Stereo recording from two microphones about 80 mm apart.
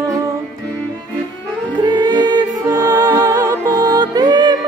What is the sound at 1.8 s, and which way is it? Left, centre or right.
Music, right.